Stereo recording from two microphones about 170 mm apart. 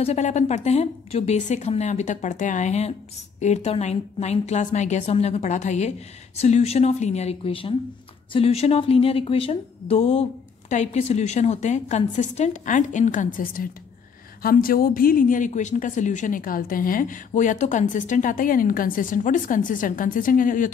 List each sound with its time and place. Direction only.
0.0 s a woman's voice: 40° left (ahead or behind)